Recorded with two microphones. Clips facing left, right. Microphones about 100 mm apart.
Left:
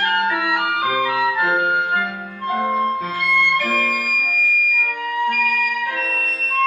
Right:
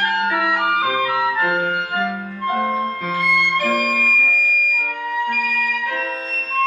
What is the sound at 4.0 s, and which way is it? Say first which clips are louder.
Music: right 4 dB; 15° left (ahead or behind).